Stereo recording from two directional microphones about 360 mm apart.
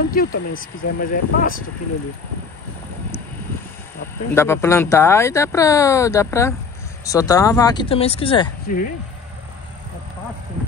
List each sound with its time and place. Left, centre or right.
0.1 s speech: left
4.4 s speech: centre